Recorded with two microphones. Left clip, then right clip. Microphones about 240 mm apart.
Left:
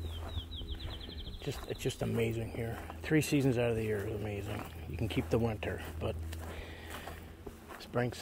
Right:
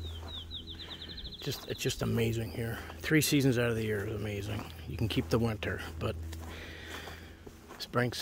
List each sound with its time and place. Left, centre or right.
1.4 s speech: right
7.8 s speech: right